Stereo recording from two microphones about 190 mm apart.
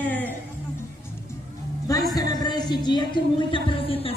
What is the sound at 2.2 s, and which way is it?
Music, 20° left (ahead or behind).